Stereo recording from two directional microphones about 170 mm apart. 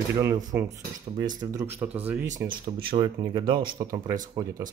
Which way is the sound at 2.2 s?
50° right (ahead or behind).